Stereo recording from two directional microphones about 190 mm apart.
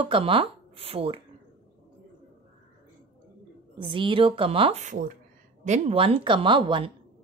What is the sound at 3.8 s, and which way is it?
A woman's voice, 25° right (ahead or behind).